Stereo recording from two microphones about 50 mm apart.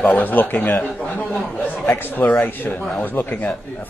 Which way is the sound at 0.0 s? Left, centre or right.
Left.